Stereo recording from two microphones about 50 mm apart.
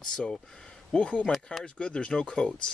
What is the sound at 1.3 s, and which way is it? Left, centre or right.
Speech, centre.